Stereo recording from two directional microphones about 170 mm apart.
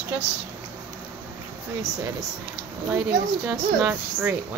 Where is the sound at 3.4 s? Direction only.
5° right (ahead or behind).